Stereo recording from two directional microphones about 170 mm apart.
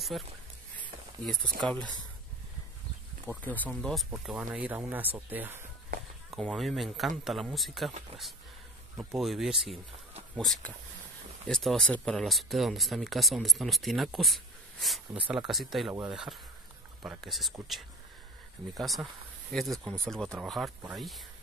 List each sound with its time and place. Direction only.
0.1 s speech: centre (ahead or behind)
1.7 s speech: 5° left (ahead or behind)
3.3 s speech: 10° left (ahead or behind); by 5.7 s 10° right (ahead or behind)
6.3 s speech: centre (ahead or behind)
8.1 s speech: 35° right (ahead or behind)
8.9 s speech: centre (ahead or behind)
18.8 s speech: centre (ahead or behind)